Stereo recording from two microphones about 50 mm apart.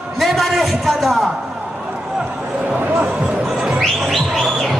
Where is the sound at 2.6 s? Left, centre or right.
Right.